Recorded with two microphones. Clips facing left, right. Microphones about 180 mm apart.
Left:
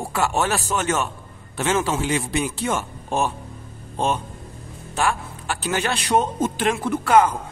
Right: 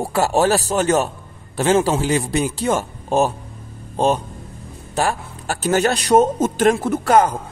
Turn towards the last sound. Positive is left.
turn(degrees=-40)  # may be behind; listen again after turning